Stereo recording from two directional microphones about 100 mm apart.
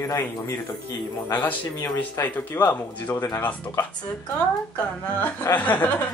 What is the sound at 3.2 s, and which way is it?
Speech, 30° left (ahead or behind).